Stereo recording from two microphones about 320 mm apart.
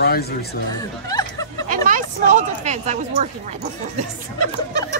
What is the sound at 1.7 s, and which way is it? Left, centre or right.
Speech, right.